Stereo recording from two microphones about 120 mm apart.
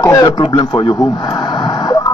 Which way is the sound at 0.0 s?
30° left (ahead or behind).